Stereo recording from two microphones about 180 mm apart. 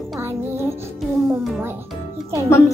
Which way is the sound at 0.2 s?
15° right (ahead or behind).